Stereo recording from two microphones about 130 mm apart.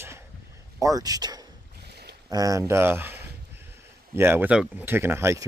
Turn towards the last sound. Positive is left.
turn(degrees=-20)  # may be behind; listen again after turning